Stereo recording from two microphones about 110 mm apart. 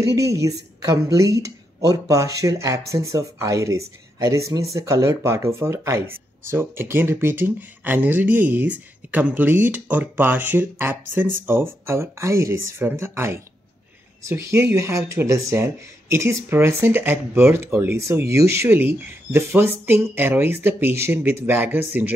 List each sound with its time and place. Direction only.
0.1 s speech: 30° right (ahead or behind)